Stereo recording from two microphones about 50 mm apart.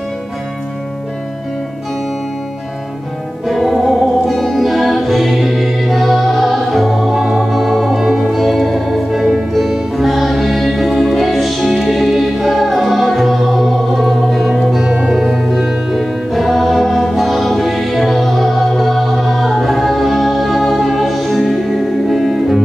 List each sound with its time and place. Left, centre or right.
3.4 s music: centre
8.3 s music: centre